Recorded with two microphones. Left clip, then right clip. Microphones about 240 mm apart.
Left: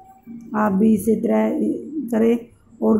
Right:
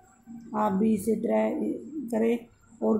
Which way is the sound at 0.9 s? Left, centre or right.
Right.